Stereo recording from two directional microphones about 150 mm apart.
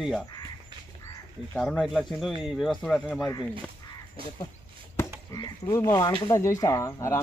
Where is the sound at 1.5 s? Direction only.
Centre (ahead or behind).